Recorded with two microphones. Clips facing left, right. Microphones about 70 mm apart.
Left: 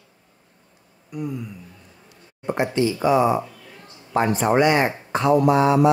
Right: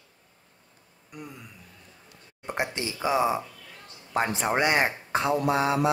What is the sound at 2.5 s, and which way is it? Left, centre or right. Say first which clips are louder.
Speech: left 9 dB; centre.